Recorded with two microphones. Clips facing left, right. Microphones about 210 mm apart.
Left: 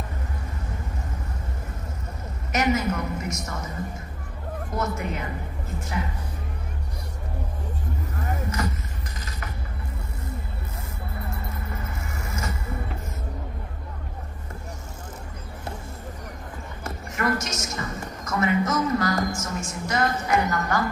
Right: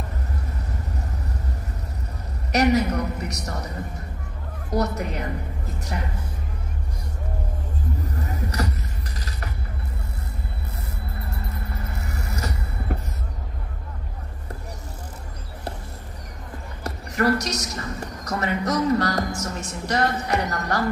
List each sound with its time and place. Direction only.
2.5 s a woman's voice: 40° right (ahead or behind)
8.6 s vehicle: 35° right (ahead or behind)
11.3 s vehicle: 35° right (ahead or behind)
16.8 s a woman's voice: 35° right (ahead or behind)